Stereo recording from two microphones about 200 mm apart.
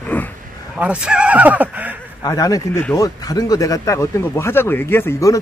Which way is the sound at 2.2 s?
20° left (ahead or behind).